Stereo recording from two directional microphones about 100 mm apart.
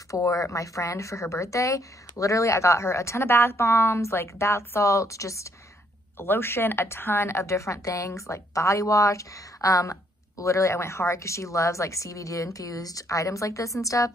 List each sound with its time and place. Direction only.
0.1 s a woman's voice: 30° left (ahead or behind)